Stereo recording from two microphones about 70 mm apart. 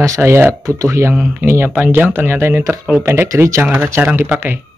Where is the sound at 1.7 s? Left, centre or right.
Right.